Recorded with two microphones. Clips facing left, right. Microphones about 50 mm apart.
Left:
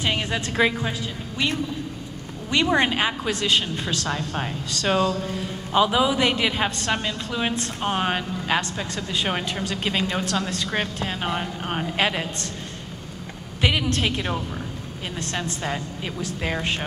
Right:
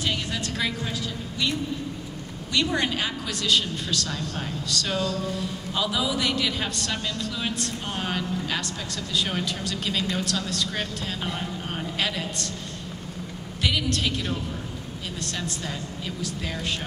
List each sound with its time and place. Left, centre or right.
0.0 s a woman's voice: left
2.5 s a woman's voice: left
13.6 s a woman's voice: left